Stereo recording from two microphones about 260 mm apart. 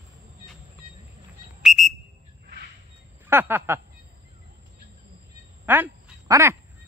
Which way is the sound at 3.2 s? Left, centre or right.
Centre.